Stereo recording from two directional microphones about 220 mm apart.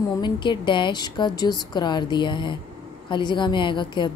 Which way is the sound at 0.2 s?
20° left (ahead or behind).